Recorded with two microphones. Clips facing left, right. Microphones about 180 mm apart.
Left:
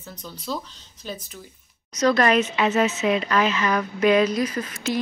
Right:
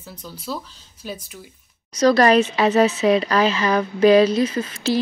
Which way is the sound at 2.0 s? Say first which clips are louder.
Right 4 dB; 35° right (ahead or behind).